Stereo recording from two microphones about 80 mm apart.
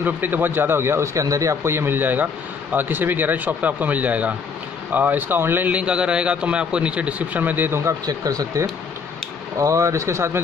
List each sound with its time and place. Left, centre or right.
0.0 s speech: right
5.7 s a man's voice: centre
8.0 s speech: right